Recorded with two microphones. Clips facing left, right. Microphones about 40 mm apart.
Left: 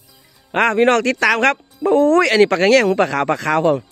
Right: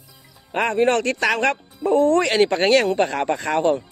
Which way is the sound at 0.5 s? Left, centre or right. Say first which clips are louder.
Left 5 dB; left.